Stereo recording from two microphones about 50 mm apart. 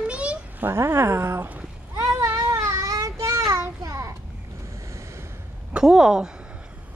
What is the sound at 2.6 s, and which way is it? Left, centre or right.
Child singing, right.